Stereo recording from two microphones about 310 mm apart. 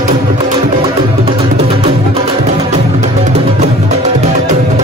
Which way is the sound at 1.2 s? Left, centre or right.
Centre.